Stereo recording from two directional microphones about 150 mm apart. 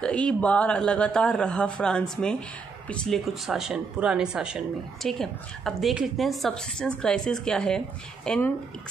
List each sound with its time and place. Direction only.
0.0 s speech: 5° left (ahead or behind)